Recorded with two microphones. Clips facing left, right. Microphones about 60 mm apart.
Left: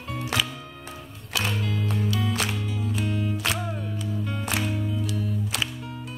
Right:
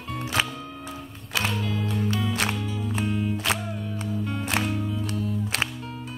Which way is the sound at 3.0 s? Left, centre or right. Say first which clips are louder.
Right 3 dB; centre.